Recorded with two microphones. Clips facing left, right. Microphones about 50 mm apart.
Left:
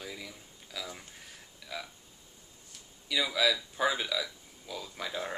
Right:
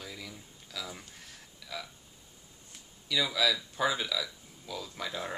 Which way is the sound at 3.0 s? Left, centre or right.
Centre.